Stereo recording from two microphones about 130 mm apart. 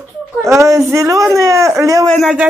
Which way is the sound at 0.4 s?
25° right (ahead or behind).